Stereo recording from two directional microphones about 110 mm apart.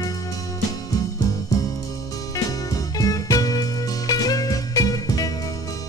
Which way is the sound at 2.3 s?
35° left (ahead or behind).